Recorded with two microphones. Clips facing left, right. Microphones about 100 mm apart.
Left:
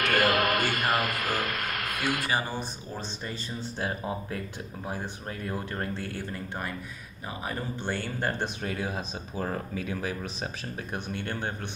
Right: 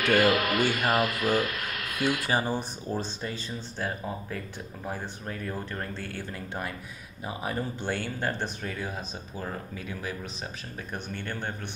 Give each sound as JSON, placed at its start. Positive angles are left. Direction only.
{"t": 0.0, "sound": "speech", "side_deg": 50}
{"t": 7.4, "sound": "speech", "side_deg": -5}
{"t": 8.4, "sound": "speech", "side_deg": 20}